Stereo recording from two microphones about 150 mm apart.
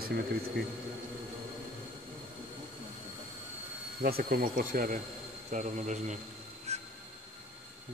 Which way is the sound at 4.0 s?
90° right.